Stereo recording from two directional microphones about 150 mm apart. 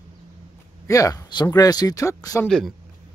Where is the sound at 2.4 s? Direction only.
5° left (ahead or behind).